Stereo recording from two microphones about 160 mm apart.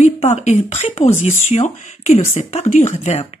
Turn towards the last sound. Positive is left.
turn(degrees=40)  # may be behind; listen again after turning